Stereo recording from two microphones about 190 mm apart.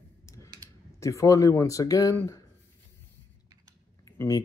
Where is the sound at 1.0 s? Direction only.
15° left (ahead or behind).